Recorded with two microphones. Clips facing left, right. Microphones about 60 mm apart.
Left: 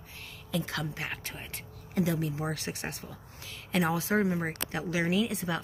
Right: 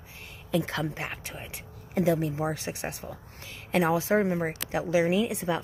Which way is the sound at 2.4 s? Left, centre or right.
Centre.